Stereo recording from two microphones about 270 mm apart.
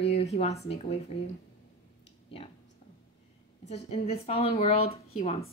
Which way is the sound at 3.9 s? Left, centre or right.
Left.